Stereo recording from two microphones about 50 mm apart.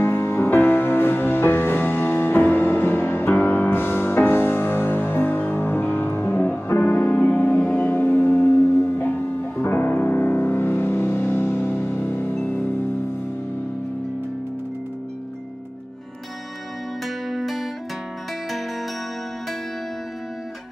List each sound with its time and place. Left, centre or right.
0.0 s music: left
0.6 s music: left
17.0 s music: centre